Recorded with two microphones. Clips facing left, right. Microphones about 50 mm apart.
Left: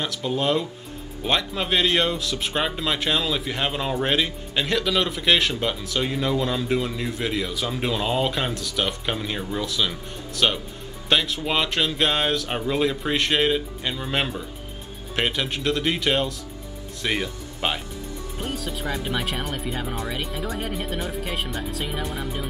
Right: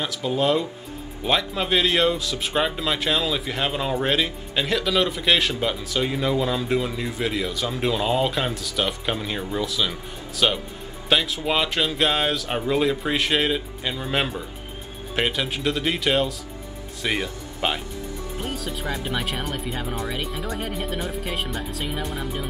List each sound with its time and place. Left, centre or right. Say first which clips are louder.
0.0 s speech: right 2 dB; centre